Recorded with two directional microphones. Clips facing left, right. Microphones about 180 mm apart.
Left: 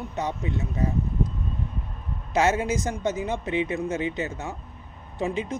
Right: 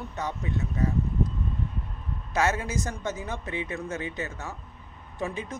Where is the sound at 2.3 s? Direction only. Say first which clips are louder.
Left 4 dB; 20° left (ahead or behind).